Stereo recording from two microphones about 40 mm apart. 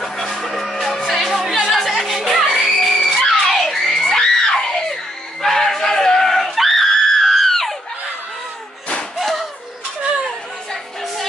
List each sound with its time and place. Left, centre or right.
0.0 s music: centre
4.1 s screaming: centre
9.1 s a sound: centre
10.7 s music: centre